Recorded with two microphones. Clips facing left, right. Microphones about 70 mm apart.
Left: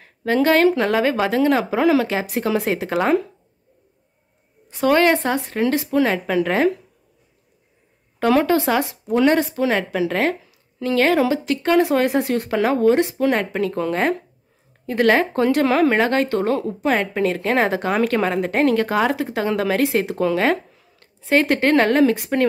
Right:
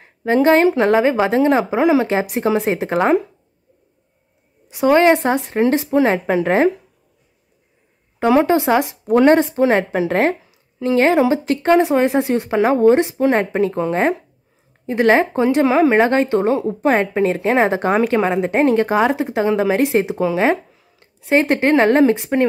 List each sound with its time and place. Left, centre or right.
0.0 s a woman's voice: right
4.6 s a woman's voice: centre
8.2 s a woman's voice: centre
9.0 s a woman's voice: right